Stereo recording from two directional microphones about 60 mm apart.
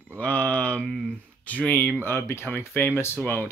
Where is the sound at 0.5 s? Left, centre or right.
Left.